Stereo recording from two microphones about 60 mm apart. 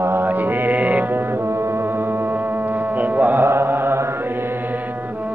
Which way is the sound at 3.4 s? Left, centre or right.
Right.